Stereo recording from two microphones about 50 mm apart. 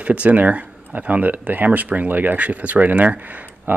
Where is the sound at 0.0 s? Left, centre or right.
Right.